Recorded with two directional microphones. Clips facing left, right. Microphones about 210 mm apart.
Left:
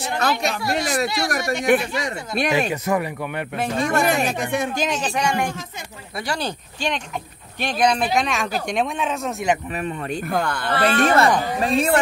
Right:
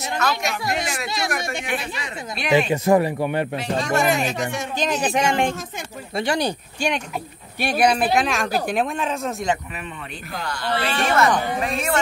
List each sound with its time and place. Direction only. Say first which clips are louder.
0.2 s speech: left 2 dB; 35° left (ahead or behind)
1.0 s speech: left 3 dB; 20° right (ahead or behind)
1.7 s speech: left 9 dB; 45° left (ahead or behind)
2.7 s speech: right 5 dB; 30° right (ahead or behind)
3.5 s speech: left 1 dB; 55° left (ahead or behind)
4.7 s speech: even; centre (ahead or behind)
5.0 s speech: right 2 dB; 20° right (ahead or behind); by 9.5 s centre (ahead or behind)
9.8 s speech: left 8 dB; 45° left (ahead or behind)
11.6 s speech: left 5 dB; 30° left (ahead or behind)